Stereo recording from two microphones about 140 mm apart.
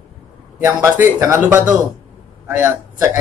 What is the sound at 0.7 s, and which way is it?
Speech, 20° right (ahead or behind).